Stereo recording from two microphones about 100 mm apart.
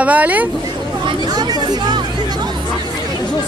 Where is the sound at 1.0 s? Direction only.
45° right (ahead or behind).